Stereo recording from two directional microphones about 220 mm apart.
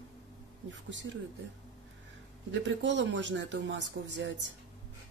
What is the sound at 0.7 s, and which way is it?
Speech, 55° right (ahead or behind).